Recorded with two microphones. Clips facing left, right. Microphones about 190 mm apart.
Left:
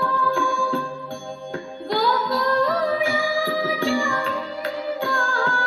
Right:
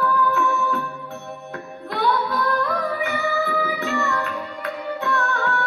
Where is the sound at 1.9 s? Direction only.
30° left (ahead or behind).